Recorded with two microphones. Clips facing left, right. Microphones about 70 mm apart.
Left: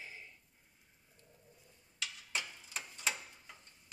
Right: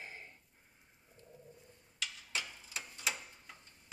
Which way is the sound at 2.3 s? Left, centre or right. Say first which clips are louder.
Left 2 dB; centre.